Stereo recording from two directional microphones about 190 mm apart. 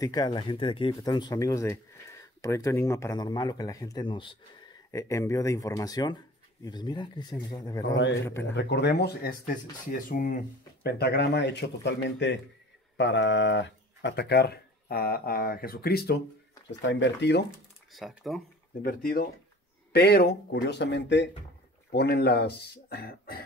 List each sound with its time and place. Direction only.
0.0 s speech: 20° left (ahead or behind)
7.9 s speech: 65° left (ahead or behind)
8.3 s speech: 15° left (ahead or behind)
8.5 s speech: 65° left (ahead or behind)
9.8 s speech: 45° left (ahead or behind)
16.8 s speech: 70° left (ahead or behind)
17.9 s speech: centre (ahead or behind)
18.8 s speech: 50° left (ahead or behind)